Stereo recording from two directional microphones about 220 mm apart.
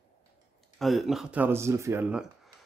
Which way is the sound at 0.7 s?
Centre (ahead or behind).